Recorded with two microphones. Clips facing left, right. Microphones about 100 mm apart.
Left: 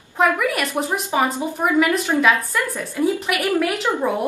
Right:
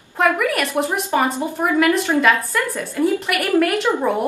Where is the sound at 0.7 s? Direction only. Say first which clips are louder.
Right 2 dB; 15° left (ahead or behind).